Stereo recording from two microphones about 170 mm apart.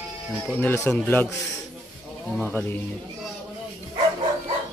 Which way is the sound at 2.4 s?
10° left (ahead or behind).